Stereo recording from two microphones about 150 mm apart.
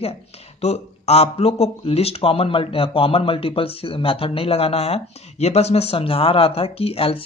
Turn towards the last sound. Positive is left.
turn(degrees=40)  # may be behind; listen again after turning